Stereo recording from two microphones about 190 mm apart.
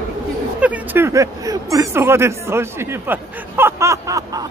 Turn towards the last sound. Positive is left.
turn(degrees=-15)  # may be behind; listen again after turning